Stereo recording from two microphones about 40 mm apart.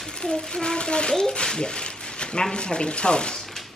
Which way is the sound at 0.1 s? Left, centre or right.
Centre.